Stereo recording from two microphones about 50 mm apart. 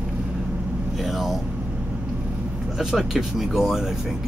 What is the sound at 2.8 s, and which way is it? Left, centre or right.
Speech, centre.